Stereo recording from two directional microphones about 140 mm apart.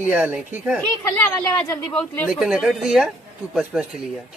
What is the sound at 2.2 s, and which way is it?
A woman's voice, 5° right (ahead or behind).